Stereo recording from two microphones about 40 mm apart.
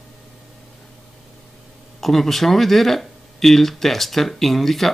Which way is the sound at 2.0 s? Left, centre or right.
Centre.